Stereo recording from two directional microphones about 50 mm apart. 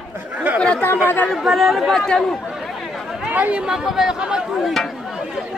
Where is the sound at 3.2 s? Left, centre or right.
Right.